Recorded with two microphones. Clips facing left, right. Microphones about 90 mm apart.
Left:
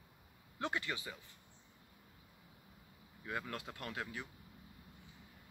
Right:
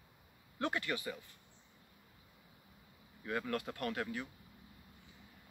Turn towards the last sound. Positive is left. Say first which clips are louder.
# right 5 dB
turn(degrees=15)  # may be behind; listen again after turning